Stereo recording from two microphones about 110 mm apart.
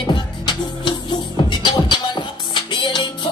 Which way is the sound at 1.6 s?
45° left (ahead or behind).